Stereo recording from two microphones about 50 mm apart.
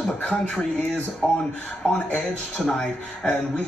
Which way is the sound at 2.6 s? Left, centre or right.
Centre.